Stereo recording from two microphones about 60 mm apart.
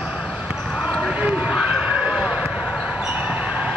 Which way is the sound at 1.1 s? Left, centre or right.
Right.